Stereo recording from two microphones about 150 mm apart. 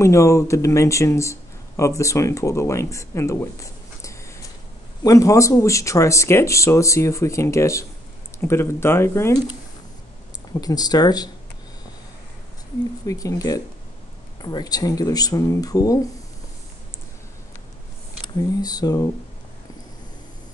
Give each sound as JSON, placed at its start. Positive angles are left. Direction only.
{"t": 0.0, "sound": "speech", "side_deg": 20}
{"t": 10.5, "sound": "speech", "side_deg": 25}
{"t": 13.0, "sound": "speech", "side_deg": 20}
{"t": 18.5, "sound": "speech", "side_deg": 25}